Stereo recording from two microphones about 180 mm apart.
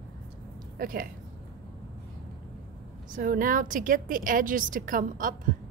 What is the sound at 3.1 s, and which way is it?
A woman's voice, 50° right (ahead or behind).